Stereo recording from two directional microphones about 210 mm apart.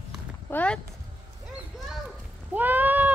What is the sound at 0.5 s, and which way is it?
Clip-clop, 5° left (ahead or behind).